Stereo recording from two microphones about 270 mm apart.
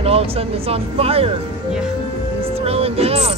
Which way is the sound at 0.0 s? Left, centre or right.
Right.